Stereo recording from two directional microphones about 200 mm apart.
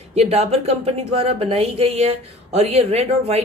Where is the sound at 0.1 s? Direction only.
30° right (ahead or behind).